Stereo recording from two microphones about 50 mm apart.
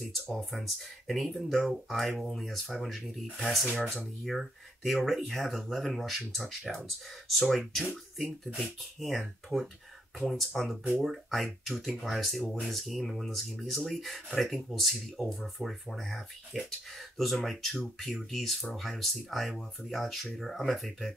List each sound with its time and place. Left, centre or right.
0.1 s speech: centre
9.5 s speech: right
10.1 s speech: centre